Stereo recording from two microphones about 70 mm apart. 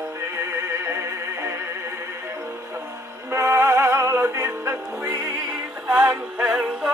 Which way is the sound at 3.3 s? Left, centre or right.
Right.